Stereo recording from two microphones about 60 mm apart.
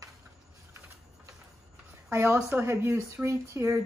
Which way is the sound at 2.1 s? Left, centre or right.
Right.